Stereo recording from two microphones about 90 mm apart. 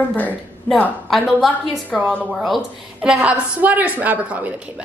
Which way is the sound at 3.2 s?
15° right (ahead or behind).